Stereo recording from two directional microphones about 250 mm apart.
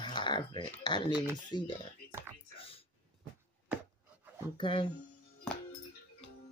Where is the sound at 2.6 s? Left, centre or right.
Left.